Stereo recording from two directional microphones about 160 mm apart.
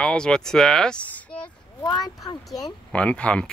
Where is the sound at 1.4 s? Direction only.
25° left (ahead or behind).